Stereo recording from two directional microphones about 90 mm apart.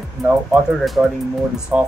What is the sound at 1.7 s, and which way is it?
Speech, 15° right (ahead or behind).